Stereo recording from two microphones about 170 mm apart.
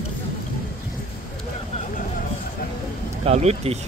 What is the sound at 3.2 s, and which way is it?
Speech, 40° right (ahead or behind).